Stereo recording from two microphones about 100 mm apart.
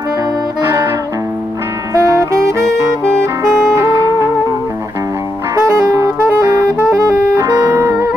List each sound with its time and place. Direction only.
0.6 s music: 25° right (ahead or behind)
2.0 s music: 35° right (ahead or behind)
5.6 s saxophone: 35° right (ahead or behind)
7.3 s music: 35° right (ahead or behind)